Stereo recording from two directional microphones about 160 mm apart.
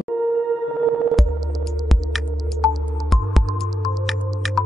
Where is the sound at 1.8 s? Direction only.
Centre (ahead or behind).